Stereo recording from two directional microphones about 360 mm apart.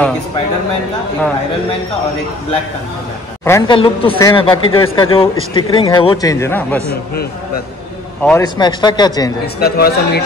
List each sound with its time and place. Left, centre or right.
3.4 s a man's voice: centre
8.2 s a man's voice: centre
9.6 s a man's voice: left